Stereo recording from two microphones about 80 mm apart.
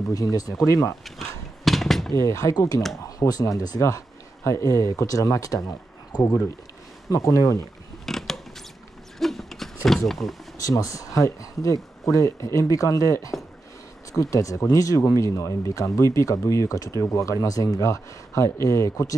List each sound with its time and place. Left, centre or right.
0.1 s speech: left
1.0 s a sound: centre
2.2 s speech: left
3.2 s speech: left
8.0 s mechanisms: centre
9.2 s a sound: centre
9.8 s speech: centre
10.6 s speech: left